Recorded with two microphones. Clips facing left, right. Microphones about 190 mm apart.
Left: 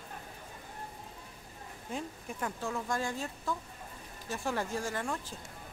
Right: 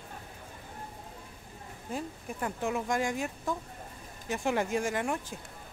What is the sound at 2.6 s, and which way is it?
Speech, 15° right (ahead or behind).